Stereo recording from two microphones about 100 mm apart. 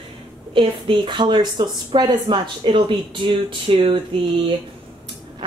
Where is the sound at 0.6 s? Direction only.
55° right (ahead or behind).